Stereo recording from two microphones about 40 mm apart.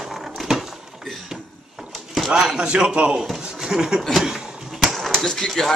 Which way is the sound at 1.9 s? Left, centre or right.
Centre.